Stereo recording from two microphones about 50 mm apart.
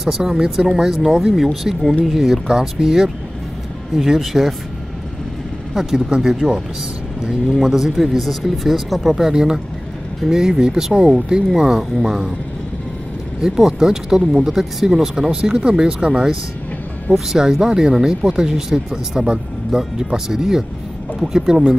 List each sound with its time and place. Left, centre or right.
0.0 s speech: centre
5.8 s speech: centre
13.4 s speech: centre